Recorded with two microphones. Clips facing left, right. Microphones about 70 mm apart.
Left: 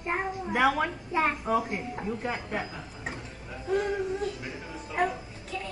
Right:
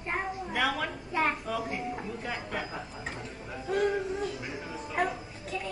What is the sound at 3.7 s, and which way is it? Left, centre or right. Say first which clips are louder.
Music: even; centre.